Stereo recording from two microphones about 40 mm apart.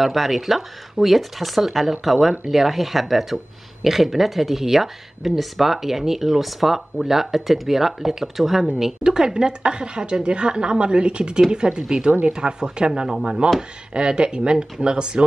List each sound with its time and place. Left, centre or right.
0.0 s a woman's voice: centre; by 15.2 s right